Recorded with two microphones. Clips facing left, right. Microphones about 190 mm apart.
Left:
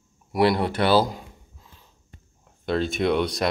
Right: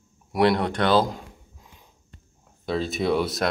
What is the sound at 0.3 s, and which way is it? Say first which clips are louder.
Speech: even; 5° left (ahead or behind).